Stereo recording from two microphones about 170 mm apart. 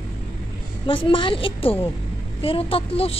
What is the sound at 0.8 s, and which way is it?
A woman's voice, 30° left (ahead or behind).